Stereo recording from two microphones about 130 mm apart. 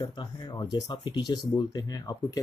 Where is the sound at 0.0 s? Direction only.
35° left (ahead or behind).